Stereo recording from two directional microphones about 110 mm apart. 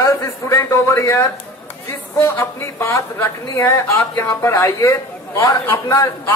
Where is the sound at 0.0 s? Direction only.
30° left (ahead or behind).